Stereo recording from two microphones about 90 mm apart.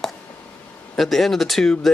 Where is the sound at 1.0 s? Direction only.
Centre (ahead or behind).